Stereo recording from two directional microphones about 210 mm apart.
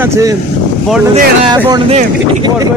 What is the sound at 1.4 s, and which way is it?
Speech, 20° right (ahead or behind).